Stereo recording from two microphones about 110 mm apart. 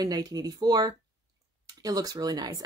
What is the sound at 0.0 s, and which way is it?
Speech, 35° right (ahead or behind).